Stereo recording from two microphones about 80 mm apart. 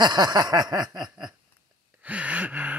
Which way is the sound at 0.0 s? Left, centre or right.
Right.